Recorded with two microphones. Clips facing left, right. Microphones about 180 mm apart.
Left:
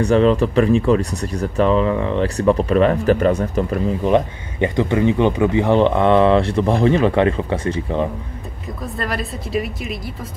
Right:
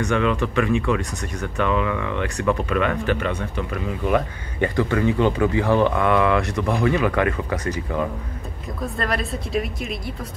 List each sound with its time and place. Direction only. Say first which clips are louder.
0.0 s speech: left 7 dB; 35° left (ahead or behind)
4.6 s speech: left 3 dB; 20° left (ahead or behind)
8.8 s speech: even; centre (ahead or behind)